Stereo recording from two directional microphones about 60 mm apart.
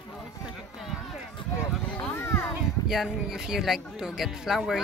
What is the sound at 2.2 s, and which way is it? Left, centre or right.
Speech, left.